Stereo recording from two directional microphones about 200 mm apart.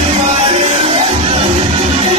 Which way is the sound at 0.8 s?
30° right (ahead or behind).